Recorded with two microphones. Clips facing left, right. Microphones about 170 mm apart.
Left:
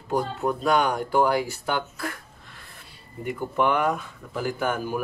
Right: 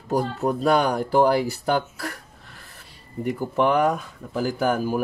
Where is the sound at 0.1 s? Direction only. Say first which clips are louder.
Right 2 dB; 40° right (ahead or behind).